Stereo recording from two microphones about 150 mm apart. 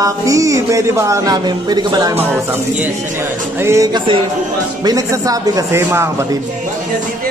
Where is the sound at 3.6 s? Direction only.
20° right (ahead or behind).